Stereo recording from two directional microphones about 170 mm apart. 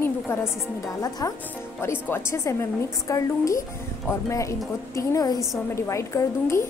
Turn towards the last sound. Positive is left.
turn(degrees=15)  # may be behind; listen again after turning